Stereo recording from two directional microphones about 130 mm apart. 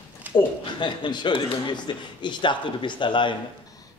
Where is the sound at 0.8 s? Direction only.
35° left (ahead or behind).